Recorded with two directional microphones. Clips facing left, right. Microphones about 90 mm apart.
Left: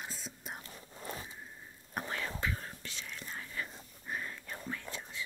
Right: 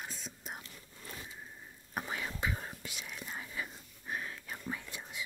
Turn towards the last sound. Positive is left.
turn(degrees=-15)  # may be behind; listen again after turning